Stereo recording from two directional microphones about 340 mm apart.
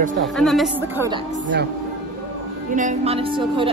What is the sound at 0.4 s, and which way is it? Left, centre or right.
Speech, centre.